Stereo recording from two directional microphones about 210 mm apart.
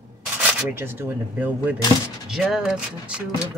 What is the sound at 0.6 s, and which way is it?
Speech, 10° right (ahead or behind).